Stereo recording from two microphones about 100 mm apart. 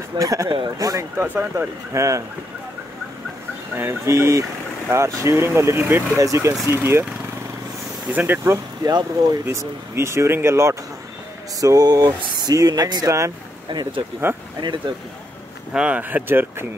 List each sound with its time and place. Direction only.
0.2 s speech: 35° right (ahead or behind)
1.1 s speech: 20° right (ahead or behind)
2.0 s speech: 30° right (ahead or behind)
3.7 s speech: 25° right (ahead or behind)
8.1 s speech: 20° right (ahead or behind)
8.8 s speech: 40° right (ahead or behind)
9.9 s speech: 25° right (ahead or behind)
11.6 s speech: 40° right (ahead or behind)
13.7 s speech: 50° right (ahead or behind)
15.7 s speech: 10° right (ahead or behind)